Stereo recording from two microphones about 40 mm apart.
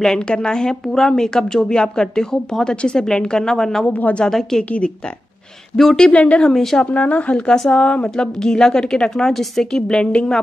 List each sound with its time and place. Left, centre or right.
0.2 s speech: left
4.6 s speech: left
5.8 s speech: centre
6.1 s speech: left
6.5 s speech: centre
6.9 s speech: left
8.1 s speech: centre